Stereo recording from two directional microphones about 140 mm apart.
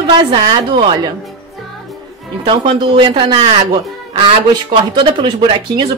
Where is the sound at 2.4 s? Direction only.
35° right (ahead or behind).